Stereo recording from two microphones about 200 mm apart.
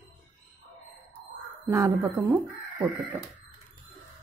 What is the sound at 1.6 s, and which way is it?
Speech, 15° right (ahead or behind).